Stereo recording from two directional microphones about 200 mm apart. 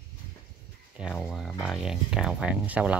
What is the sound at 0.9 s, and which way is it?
Speech, 5° right (ahead or behind).